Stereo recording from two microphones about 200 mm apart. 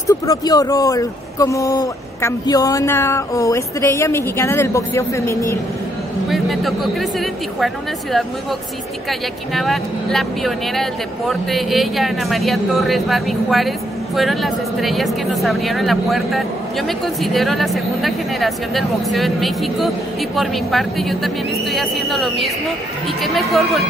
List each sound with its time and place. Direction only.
0.0 s speech: 15° left (ahead or behind)
6.3 s speech: centre (ahead or behind)
9.5 s speech: centre (ahead or behind)